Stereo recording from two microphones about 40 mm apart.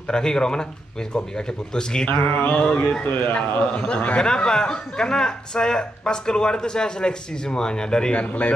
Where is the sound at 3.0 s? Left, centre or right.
Left.